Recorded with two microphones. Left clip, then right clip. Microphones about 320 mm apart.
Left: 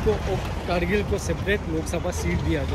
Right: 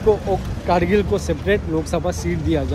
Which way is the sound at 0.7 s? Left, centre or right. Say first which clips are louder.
Right 7 dB; centre.